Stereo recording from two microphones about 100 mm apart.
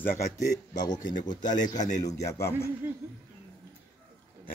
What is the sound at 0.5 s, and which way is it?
A man's voice, 40° left (ahead or behind).